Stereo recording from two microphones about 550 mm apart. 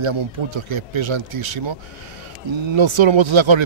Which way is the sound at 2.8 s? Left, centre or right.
Right.